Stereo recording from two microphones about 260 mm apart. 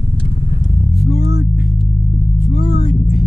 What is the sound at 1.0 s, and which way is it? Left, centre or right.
Vehicle, left.